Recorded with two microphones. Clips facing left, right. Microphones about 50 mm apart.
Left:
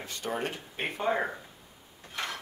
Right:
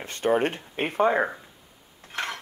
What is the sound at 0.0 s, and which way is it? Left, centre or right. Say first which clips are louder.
Speech: right 10 dB; right.